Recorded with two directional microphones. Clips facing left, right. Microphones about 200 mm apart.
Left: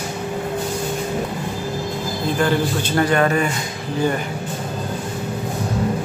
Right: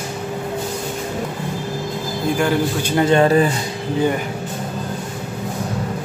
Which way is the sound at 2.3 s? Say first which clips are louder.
Even; 15° right (ahead or behind).